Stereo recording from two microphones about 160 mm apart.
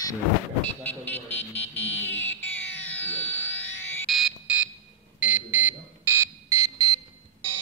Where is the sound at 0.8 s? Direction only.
10° left (ahead or behind).